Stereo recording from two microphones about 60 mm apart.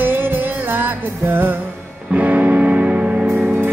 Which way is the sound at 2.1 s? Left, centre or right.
Right.